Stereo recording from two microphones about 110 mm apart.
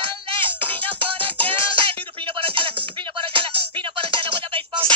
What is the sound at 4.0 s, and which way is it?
Music, 50° right (ahead or behind).